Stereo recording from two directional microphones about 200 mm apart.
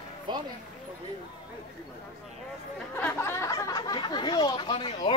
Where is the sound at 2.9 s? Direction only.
10° left (ahead or behind).